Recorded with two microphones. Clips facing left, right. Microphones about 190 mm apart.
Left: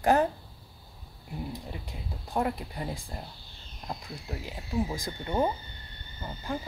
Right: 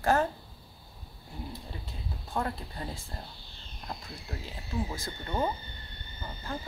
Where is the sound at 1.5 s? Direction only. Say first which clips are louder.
Left 3 dB; 15° left (ahead or behind).